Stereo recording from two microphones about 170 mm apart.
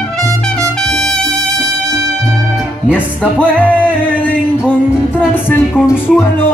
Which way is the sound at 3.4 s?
10° left (ahead or behind).